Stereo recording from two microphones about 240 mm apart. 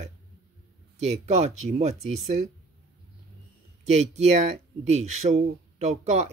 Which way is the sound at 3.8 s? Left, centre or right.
Right.